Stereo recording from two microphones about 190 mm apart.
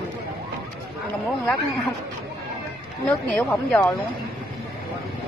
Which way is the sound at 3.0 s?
5° left (ahead or behind).